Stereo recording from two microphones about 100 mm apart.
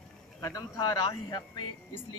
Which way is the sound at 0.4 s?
35° left (ahead or behind).